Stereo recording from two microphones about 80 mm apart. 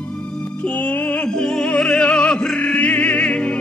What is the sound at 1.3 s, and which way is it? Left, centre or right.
Opera, centre.